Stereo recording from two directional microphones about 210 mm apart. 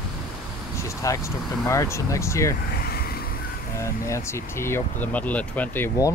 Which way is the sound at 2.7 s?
45° left (ahead or behind).